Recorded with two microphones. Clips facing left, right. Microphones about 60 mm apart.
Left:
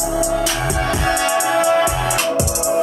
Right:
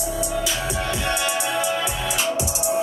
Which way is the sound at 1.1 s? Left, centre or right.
Left.